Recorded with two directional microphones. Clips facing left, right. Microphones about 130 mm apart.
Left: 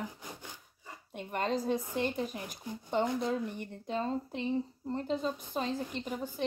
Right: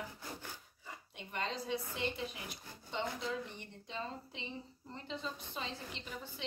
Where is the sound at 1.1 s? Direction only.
50° left (ahead or behind).